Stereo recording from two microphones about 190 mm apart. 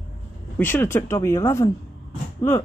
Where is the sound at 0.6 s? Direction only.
10° left (ahead or behind).